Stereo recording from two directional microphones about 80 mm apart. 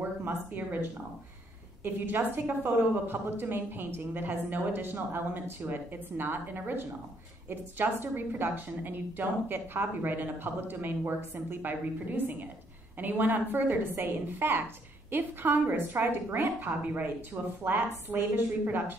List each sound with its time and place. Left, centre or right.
0.2 s speech: right
2.0 s a woman's voice: right